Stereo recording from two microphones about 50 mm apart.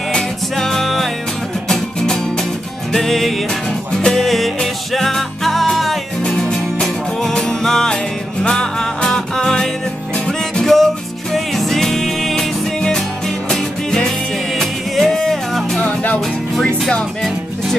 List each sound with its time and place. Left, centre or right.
0.1 s music: centre
15.8 s music: left
16.5 s music: centre